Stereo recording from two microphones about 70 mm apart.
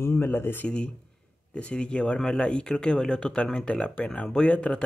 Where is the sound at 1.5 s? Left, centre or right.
Centre.